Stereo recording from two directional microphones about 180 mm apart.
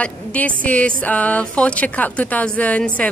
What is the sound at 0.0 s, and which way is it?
A woman's voice, 5° left (ahead or behind).